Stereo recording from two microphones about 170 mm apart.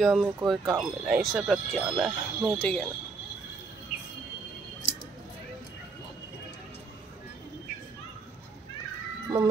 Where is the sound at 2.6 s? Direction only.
5° left (ahead or behind).